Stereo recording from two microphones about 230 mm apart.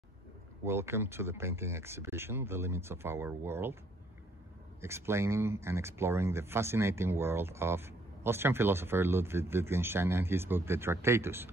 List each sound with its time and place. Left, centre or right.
0.7 s speech: centre
4.8 s speech: centre